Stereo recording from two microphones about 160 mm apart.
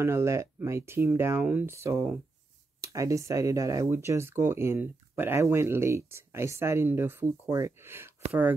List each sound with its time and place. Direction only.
0.0 s speech: 15° right (ahead or behind)